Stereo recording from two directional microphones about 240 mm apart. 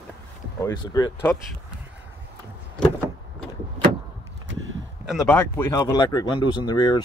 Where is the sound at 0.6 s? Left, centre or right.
Centre.